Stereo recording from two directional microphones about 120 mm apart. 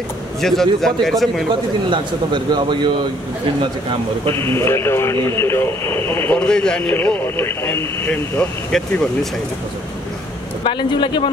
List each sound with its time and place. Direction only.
0.4 s a man's voice: 5° left (ahead or behind)
1.5 s speech: 40° right (ahead or behind)
4.4 s speech: 20° left (ahead or behind)
10.6 s speech: 40° left (ahead or behind)